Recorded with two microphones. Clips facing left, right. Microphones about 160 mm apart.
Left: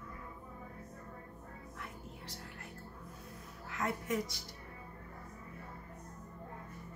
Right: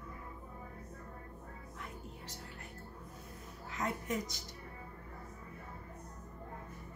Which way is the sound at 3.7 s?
20° right (ahead or behind).